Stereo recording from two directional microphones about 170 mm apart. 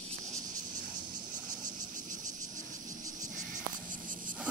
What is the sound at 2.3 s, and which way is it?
Cricket, 20° right (ahead or behind).